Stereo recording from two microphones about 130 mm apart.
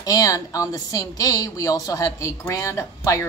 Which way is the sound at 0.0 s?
25° left (ahead or behind).